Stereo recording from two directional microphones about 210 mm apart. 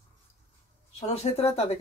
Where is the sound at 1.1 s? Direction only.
30° left (ahead or behind).